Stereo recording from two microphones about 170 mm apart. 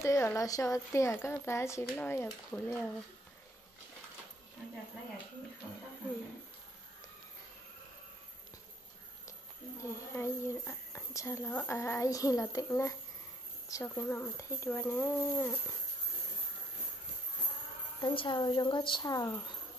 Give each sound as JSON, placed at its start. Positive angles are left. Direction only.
{"t": 0.0, "sound": "speech", "side_deg": 15}
{"t": 9.8, "sound": "speech", "side_deg": 15}
{"t": 18.0, "sound": "speech", "side_deg": 30}